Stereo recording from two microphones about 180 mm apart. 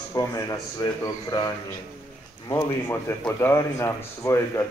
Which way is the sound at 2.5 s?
15° left (ahead or behind).